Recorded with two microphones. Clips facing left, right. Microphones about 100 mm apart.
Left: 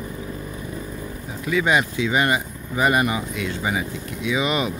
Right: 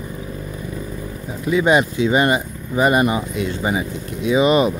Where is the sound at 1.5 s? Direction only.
30° right (ahead or behind).